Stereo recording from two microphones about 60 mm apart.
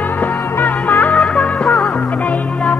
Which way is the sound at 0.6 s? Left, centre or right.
Left.